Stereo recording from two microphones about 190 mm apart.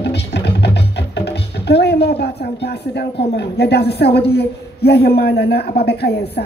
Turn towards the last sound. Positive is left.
turn(degrees=55)  # may be behind; listen again after turning